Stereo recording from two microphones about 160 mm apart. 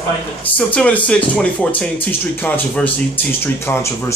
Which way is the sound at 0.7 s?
10° left (ahead or behind).